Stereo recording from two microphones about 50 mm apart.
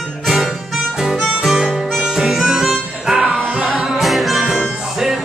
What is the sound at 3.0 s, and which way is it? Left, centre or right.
Music, centre.